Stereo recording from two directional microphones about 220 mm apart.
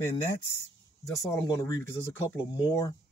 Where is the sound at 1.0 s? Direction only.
15° left (ahead or behind).